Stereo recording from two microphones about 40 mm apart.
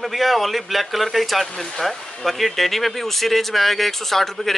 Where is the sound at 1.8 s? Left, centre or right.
Centre.